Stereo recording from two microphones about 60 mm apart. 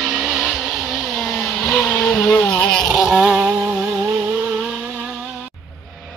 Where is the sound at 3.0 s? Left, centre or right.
Centre.